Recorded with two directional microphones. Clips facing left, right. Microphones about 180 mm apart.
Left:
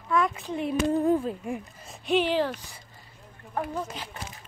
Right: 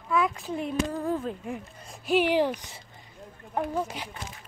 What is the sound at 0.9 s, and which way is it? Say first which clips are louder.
Speech: left 6 dB; 20° left (ahead or behind).